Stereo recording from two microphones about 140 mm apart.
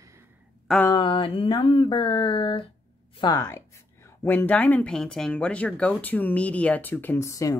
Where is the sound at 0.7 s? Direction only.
Centre (ahead or behind).